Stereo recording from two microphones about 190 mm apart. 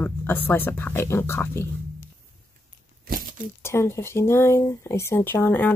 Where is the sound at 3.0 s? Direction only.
50° right (ahead or behind).